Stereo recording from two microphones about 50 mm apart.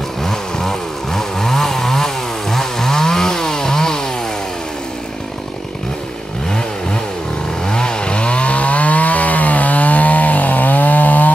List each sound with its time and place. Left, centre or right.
0.2 s chainsaw: centre
7.6 s chainsaw: centre; by 11.3 s left